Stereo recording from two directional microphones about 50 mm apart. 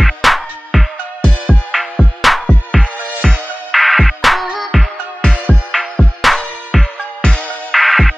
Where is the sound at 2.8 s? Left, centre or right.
Centre.